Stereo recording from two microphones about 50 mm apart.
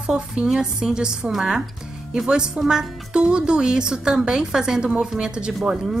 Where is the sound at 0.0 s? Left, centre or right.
Centre.